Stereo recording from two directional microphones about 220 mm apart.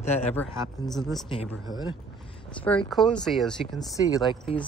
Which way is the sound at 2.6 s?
5° left (ahead or behind).